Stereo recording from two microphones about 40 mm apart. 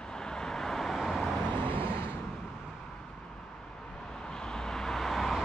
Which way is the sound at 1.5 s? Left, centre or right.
Left.